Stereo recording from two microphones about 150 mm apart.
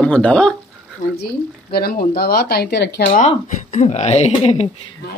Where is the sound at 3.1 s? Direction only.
55° left (ahead or behind).